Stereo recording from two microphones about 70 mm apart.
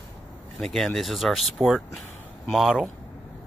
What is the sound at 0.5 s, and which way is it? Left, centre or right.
Speech, centre.